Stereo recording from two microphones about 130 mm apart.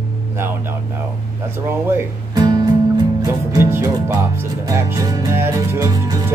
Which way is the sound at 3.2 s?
20° right (ahead or behind).